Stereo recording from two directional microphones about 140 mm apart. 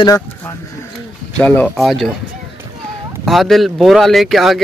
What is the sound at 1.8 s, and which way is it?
Speech, centre (ahead or behind).